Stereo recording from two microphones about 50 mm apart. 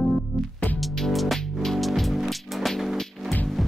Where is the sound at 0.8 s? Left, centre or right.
Centre.